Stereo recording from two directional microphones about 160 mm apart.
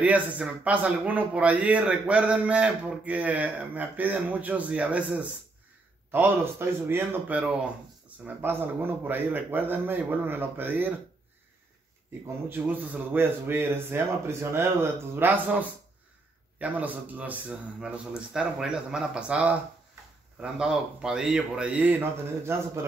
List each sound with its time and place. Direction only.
0.0 s a man's voice: 10° right (ahead or behind)
12.4 s a man's voice: 10° right (ahead or behind)